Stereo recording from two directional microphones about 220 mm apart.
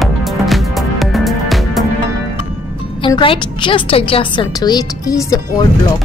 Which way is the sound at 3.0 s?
25° left (ahead or behind).